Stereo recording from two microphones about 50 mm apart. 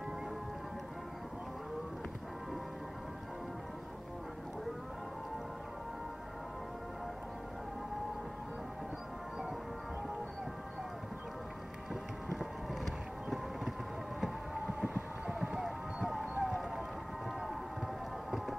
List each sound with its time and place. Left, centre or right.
12.8 s vehicle: centre
14.2 s a sound: centre
15.3 s music: centre
16.3 s run: centre